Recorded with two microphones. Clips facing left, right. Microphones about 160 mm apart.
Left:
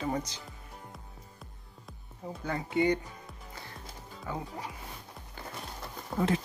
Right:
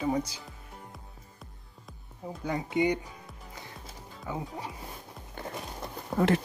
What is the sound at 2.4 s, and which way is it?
Speech, 15° right (ahead or behind).